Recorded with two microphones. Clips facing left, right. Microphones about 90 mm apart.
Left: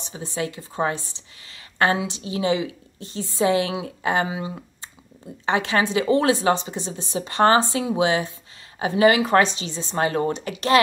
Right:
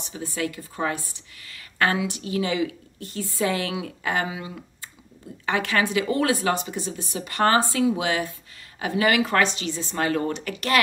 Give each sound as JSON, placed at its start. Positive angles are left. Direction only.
{"t": 0.1, "sound": "speech", "side_deg": 25}